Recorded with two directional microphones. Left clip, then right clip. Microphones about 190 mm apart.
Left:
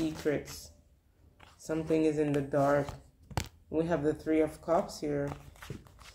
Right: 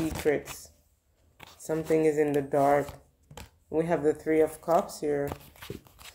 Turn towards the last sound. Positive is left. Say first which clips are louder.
# right 5 dB
turn(degrees=-35)  # may be behind; listen again after turning